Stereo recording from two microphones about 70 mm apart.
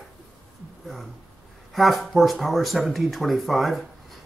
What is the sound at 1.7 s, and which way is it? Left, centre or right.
Speech, centre.